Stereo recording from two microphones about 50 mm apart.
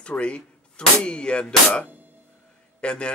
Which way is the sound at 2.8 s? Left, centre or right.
Left.